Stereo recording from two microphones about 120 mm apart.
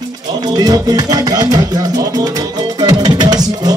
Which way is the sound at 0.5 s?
35° right (ahead or behind).